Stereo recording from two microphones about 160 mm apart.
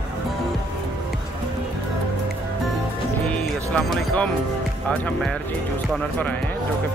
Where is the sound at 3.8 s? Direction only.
5° left (ahead or behind).